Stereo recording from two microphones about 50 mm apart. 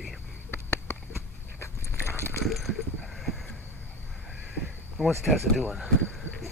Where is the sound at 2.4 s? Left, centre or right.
Centre.